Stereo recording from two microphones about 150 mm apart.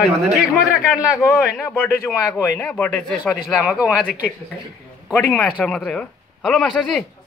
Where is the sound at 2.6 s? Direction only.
5° left (ahead or behind).